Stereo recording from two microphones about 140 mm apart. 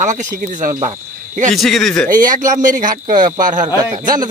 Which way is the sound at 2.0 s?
75° right (ahead or behind).